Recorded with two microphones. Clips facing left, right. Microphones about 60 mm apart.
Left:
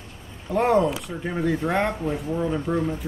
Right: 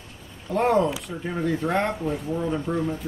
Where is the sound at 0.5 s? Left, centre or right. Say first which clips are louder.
Left 1 dB; centre.